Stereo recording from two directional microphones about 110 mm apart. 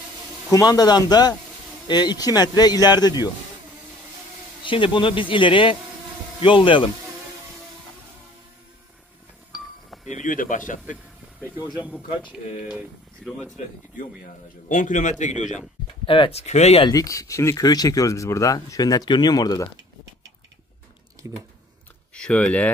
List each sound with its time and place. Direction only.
0.5 s speech: 35° left (ahead or behind)
4.6 s speech: 50° left (ahead or behind)
11.8 s speech: 15° right (ahead or behind)
15.0 s speech: 90° left
16.1 s speech: 60° left (ahead or behind); by 16.8 s 90° left
16.8 s speech: 35° left (ahead or behind)
21.2 s speech: 30° right (ahead or behind)
22.1 s speech: 10° left (ahead or behind)